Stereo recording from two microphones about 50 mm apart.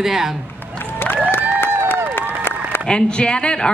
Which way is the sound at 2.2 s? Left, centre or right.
Left.